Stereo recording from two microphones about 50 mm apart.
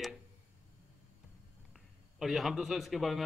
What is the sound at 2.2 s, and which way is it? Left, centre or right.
A man's voice, centre.